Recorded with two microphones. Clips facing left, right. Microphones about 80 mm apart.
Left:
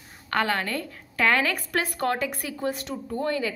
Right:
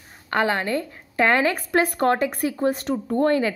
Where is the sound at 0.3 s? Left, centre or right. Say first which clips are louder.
Right 4 dB; right.